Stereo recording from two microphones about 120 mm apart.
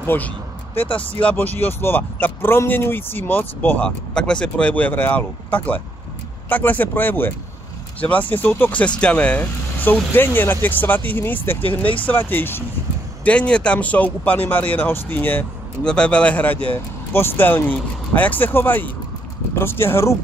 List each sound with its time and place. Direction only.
0.0 s speech: 15° left (ahead or behind)
11.6 s speech: 45° left (ahead or behind)
12.1 s speech: 15° left (ahead or behind)